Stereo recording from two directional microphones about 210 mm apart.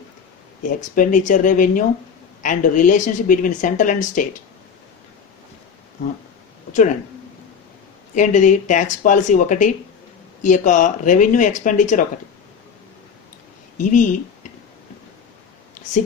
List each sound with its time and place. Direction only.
0.7 s a woman's voice: 40° left (ahead or behind)
8.1 s a woman's voice: 35° left (ahead or behind)
13.7 s speech: 35° left (ahead or behind)